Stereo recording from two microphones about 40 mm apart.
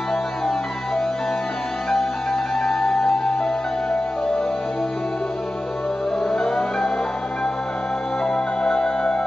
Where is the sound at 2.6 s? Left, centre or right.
Centre.